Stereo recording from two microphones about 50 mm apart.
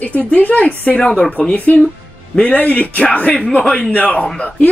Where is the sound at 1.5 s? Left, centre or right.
Left.